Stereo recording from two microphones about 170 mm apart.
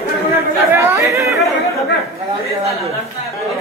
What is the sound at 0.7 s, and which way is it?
Chatter, 15° right (ahead or behind).